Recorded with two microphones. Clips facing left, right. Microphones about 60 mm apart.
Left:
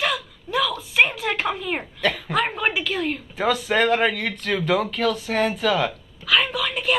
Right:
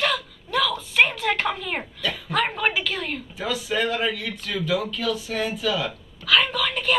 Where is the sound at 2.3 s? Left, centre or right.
Centre.